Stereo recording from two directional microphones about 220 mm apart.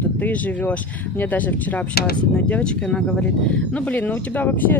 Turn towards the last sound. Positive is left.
turn(degrees=10)  # may be behind; listen again after turning